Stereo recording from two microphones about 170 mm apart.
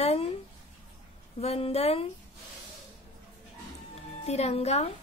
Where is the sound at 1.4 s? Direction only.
35° left (ahead or behind).